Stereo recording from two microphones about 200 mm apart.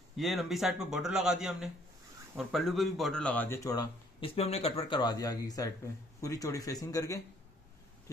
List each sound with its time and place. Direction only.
0.2 s speech: centre (ahead or behind)
4.2 s speech: 30° left (ahead or behind)